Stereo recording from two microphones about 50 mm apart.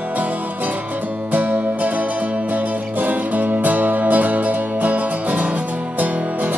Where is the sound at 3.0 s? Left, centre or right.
Right.